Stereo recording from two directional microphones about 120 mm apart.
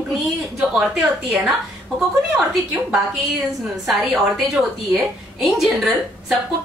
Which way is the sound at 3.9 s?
Centre (ahead or behind).